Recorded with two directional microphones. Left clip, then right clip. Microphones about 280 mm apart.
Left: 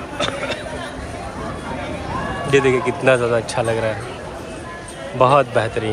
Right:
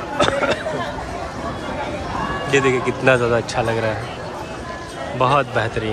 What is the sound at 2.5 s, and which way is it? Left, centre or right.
Speech, centre.